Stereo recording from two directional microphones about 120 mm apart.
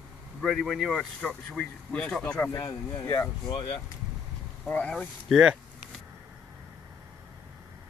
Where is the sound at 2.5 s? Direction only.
30° left (ahead or behind).